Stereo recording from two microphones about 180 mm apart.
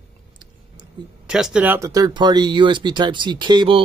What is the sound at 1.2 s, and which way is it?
Speech, 5° right (ahead or behind).